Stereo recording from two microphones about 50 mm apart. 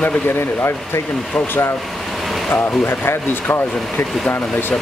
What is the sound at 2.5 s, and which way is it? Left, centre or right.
Speech, left.